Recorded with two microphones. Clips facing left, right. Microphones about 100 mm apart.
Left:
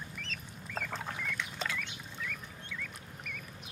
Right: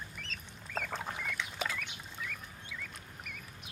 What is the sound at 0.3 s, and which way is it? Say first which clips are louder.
Duck: right 2 dB; 5° right (ahead or behind).